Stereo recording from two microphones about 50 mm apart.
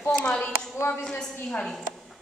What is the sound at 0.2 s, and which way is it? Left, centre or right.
Speech, left.